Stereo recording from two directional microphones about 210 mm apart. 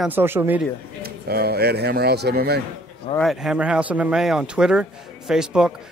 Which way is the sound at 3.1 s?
Centre (ahead or behind).